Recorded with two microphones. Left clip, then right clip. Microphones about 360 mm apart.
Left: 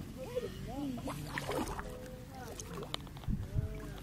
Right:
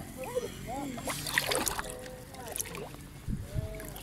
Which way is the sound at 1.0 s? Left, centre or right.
Right.